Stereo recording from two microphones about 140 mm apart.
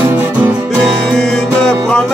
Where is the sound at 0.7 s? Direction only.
Centre (ahead or behind).